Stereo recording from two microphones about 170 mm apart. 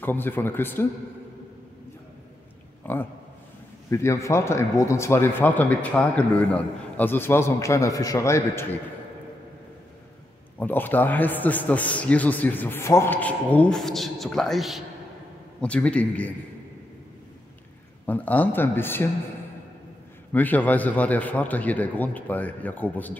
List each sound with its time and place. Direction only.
0.0 s speech: 10° left (ahead or behind)
2.8 s speech: 10° left (ahead or behind)
10.6 s speech: 10° left (ahead or behind)
18.0 s speech: 10° left (ahead or behind)
20.3 s speech: 10° left (ahead or behind)